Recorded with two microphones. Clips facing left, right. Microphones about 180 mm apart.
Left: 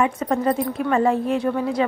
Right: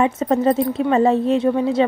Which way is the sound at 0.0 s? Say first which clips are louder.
Right 4 dB; 25° right (ahead or behind).